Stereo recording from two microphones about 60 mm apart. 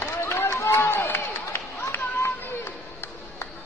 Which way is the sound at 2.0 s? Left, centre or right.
Left.